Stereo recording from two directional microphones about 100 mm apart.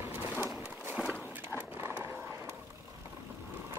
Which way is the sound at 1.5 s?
20° right (ahead or behind).